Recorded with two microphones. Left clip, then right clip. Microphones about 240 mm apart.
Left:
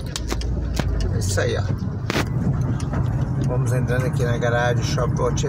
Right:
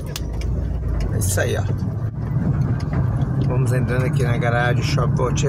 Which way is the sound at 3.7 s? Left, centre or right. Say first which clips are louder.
Right 1 dB; centre.